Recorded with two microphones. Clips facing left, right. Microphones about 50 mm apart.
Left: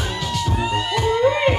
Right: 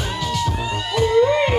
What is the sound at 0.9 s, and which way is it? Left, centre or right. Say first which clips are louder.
Music: right 4 dB; centre.